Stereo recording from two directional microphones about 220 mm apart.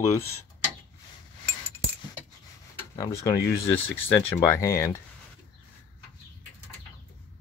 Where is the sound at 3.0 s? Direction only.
15° left (ahead or behind).